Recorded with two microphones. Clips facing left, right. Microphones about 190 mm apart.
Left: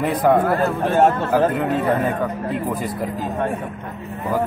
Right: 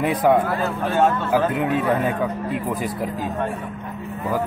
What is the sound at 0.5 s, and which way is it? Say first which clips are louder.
Speech: left 4 dB; 50° left (ahead or behind).